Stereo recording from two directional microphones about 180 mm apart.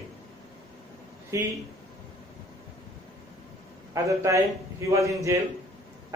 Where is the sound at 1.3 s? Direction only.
15° right (ahead or behind).